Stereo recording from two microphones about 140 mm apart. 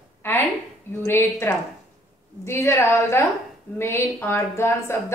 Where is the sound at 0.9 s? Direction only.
15° left (ahead or behind).